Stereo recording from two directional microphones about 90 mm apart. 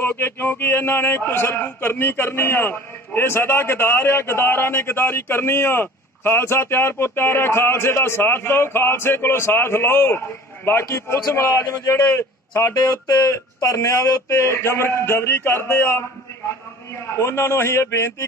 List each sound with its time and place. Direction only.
0.0 s a man's voice: 25° left (ahead or behind)
13.0 s speech: 45° left (ahead or behind); by 16.0 s 30° left (ahead or behind)
17.1 s speech: 30° left (ahead or behind)